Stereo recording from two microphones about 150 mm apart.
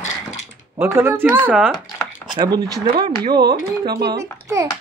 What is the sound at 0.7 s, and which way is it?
Speech, 15° right (ahead or behind).